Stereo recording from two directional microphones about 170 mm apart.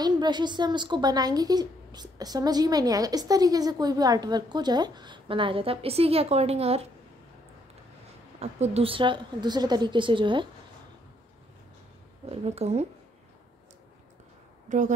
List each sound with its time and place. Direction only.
0.0 s a woman's voice: 25° right (ahead or behind)
8.4 s a woman's voice: 40° right (ahead or behind)
12.3 s speech: 40° right (ahead or behind)
14.7 s a woman's voice: 45° right (ahead or behind)